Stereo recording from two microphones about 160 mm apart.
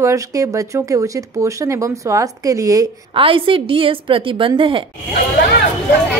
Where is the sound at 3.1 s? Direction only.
35° right (ahead or behind).